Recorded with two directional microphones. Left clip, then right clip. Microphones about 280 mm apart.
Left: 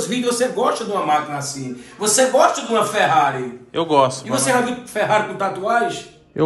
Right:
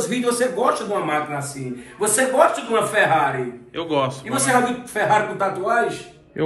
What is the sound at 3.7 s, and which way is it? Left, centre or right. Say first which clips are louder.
Speech: left 6 dB; centre.